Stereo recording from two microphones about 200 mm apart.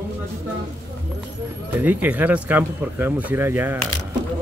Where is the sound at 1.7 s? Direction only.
10° right (ahead or behind).